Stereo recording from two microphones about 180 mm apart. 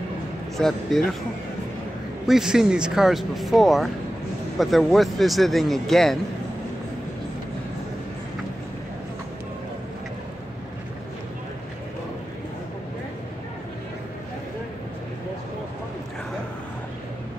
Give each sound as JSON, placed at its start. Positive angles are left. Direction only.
{"t": 0.6, "sound": "speech", "side_deg": 0}
{"t": 2.2, "sound": "speech", "side_deg": -5}